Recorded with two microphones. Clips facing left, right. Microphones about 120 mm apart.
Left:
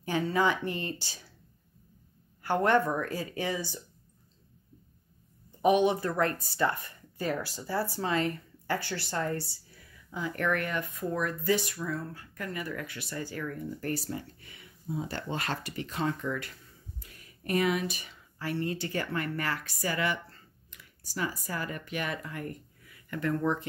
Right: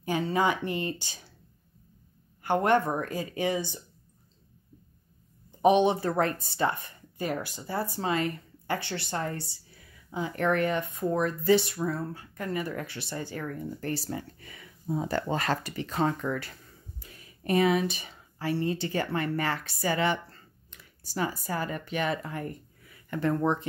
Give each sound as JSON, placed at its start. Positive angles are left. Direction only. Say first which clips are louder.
{"t": 0.0, "sound": "speech", "louder": "right 1 dB", "side_deg": -15}
{"t": 2.4, "sound": "speech", "louder": "right 1 dB", "side_deg": -15}
{"t": 5.6, "sound": "speech", "louder": "right 2 dB", "side_deg": -25}
{"t": 14.1, "sound": "speech", "louder": "right 2 dB", "side_deg": -45}